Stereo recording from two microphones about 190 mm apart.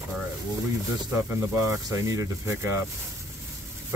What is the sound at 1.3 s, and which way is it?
Speech, 15° right (ahead or behind).